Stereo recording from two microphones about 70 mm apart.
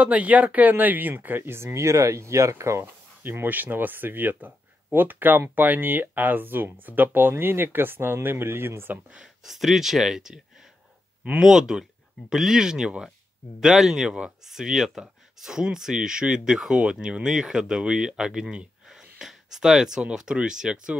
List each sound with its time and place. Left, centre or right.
0.0 s speech: right
2.8 s speech: right
9.1 s speech: centre